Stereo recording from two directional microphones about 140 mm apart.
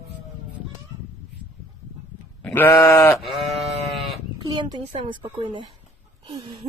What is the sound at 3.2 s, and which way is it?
Sheep, centre (ahead or behind).